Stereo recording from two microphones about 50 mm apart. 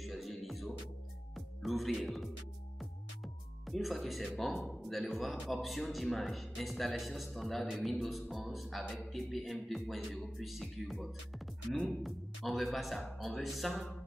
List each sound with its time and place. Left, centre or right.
0.0 s music: centre
3.6 s speech: centre